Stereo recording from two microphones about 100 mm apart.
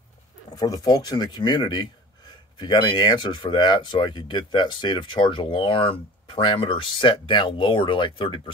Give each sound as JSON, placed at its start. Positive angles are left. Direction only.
{"t": 0.6, "sound": "speech", "side_deg": 40}